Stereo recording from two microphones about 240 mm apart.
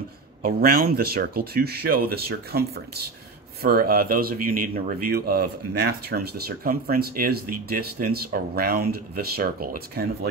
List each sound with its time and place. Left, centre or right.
0.4 s speech: right